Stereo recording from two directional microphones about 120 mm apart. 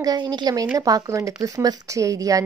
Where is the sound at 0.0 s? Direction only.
35° right (ahead or behind).